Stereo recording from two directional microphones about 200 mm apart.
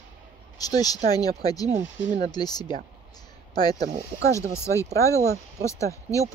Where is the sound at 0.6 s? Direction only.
20° left (ahead or behind).